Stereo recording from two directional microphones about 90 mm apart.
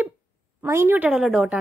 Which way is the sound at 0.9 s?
10° right (ahead or behind).